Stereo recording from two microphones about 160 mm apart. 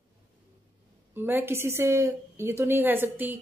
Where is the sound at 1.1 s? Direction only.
15° right (ahead or behind).